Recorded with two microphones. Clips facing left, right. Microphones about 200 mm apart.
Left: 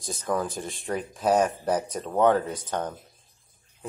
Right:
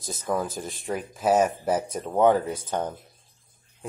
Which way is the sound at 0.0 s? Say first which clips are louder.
Even; centre (ahead or behind).